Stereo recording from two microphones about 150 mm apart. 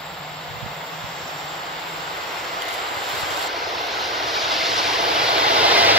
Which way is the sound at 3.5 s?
Centre (ahead or behind).